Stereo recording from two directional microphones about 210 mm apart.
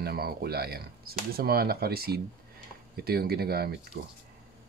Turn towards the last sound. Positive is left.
turn(degrees=-50)  # may be behind; listen again after turning